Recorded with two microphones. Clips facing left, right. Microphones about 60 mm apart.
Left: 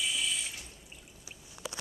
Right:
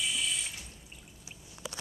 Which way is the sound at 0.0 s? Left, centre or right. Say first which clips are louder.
Even; centre.